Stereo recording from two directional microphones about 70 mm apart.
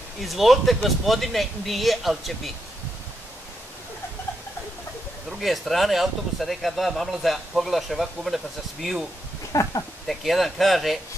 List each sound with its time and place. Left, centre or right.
0.2 s speech: centre
5.4 s speech: centre
9.5 s speech: left
10.0 s speech: centre